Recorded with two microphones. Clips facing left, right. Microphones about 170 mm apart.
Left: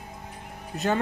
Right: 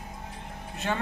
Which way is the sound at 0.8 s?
40° left (ahead or behind).